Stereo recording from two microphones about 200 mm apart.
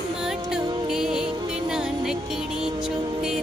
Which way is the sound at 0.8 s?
5° right (ahead or behind).